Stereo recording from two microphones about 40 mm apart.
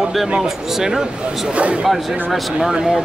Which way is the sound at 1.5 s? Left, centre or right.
Right.